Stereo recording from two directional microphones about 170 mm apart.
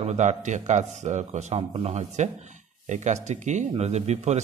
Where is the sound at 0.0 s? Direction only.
45° right (ahead or behind).